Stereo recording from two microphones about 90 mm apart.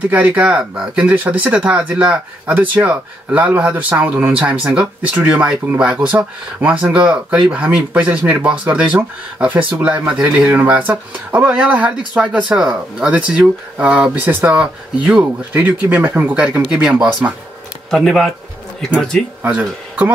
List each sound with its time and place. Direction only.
0.1 s speech: 15° right (ahead or behind)
10.6 s speech: 20° right (ahead or behind)
17.9 s speech: centre (ahead or behind)
19.4 s speech: 15° right (ahead or behind)